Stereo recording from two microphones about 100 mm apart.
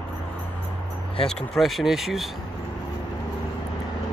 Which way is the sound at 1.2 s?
5° left (ahead or behind).